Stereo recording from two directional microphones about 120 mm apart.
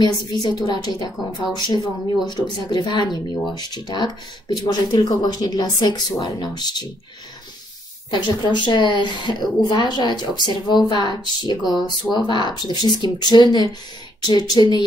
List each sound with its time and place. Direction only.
0.0 s a woman's voice: 35° left (ahead or behind)
8.1 s a woman's voice: 40° left (ahead or behind)